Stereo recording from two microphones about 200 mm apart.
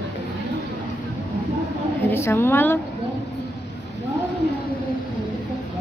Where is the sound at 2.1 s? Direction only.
10° left (ahead or behind).